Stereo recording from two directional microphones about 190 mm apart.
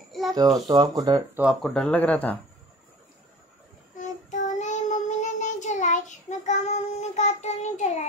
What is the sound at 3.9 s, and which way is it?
Child singing, 40° left (ahead or behind).